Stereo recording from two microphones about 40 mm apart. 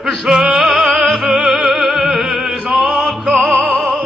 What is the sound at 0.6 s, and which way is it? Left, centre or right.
Music, centre.